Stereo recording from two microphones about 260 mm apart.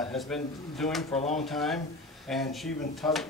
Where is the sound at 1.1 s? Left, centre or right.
Left.